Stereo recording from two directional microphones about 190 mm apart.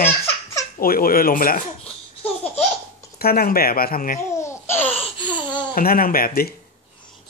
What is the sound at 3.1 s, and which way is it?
Speech, 50° left (ahead or behind).